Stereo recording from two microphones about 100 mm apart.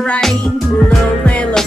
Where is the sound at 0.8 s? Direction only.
10° left (ahead or behind).